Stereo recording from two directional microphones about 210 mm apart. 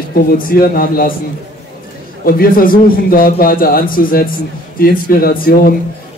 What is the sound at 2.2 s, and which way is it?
A man's voice, 45° left (ahead or behind).